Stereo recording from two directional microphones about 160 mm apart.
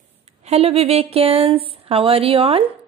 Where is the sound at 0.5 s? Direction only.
40° right (ahead or behind).